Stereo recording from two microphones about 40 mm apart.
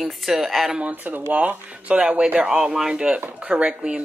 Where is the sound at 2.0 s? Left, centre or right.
Right.